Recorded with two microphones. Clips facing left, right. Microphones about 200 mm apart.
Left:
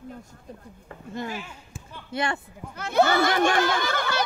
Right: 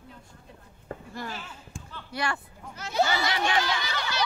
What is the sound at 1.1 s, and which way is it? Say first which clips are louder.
Speech: left 9 dB; 15° left (ahead or behind).